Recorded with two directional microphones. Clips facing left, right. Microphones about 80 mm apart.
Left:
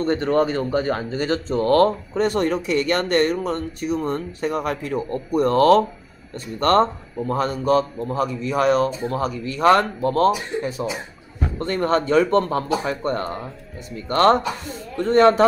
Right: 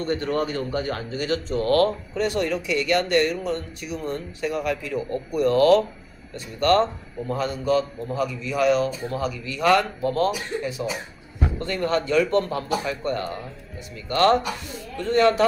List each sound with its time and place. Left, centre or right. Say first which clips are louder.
0.0 s a man's voice: left 5 dB; left
11.6 s speech: left 5 dB; left